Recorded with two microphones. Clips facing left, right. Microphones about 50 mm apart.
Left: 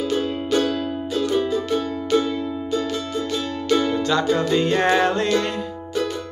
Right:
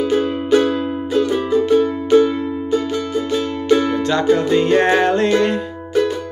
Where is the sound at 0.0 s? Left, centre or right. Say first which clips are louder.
Right 5 dB; right.